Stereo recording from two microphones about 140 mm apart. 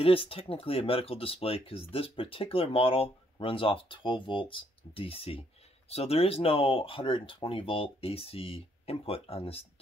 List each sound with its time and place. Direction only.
0.0 s speech: 40° left (ahead or behind)